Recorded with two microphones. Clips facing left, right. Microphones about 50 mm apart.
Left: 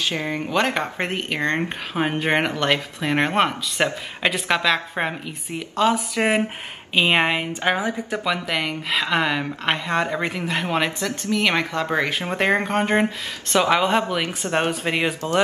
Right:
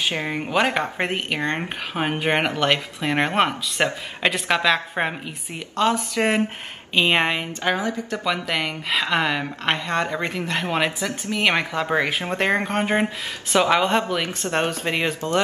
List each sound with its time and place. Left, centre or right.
0.0 s speech: right
0.3 s speech: centre
7.6 s speech: left
8.2 s speech: centre
11.1 s speech: centre